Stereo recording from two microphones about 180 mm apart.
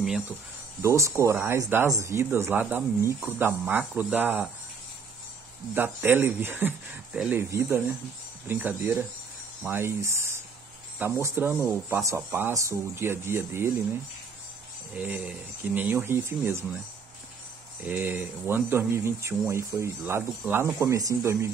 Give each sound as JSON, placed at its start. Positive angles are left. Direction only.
{"t": 0.8, "sound": "speech", "side_deg": -15}
{"t": 5.8, "sound": "speech", "side_deg": -10}
{"t": 15.0, "sound": "speech", "side_deg": -10}
{"t": 17.8, "sound": "speech", "side_deg": -10}